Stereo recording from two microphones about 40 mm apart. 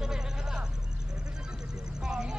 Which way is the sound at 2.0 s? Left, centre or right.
Right.